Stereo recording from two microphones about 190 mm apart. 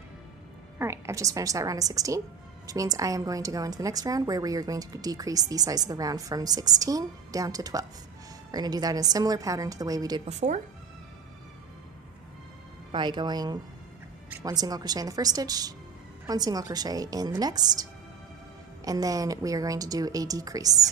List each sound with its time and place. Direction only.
0.7 s a woman's voice: 15° right (ahead or behind)
10.2 s speech: 35° right (ahead or behind)
12.9 s a woman's voice: 25° right (ahead or behind)
18.9 s a woman's voice: 20° right (ahead or behind)